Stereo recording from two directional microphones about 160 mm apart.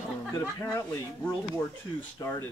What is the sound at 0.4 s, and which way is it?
Speech, 15° left (ahead or behind).